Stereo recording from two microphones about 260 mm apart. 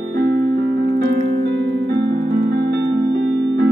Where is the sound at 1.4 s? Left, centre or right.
Right.